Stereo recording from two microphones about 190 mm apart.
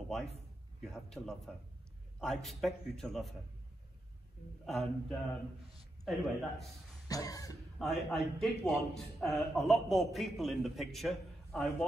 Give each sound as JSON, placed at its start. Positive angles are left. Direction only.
{"t": 0.8, "sound": "a man's voice", "side_deg": 5}
{"t": 4.6, "sound": "a man's voice", "side_deg": 0}
{"t": 7.1, "sound": "cough", "side_deg": 20}
{"t": 7.8, "sound": "a man's voice", "side_deg": 0}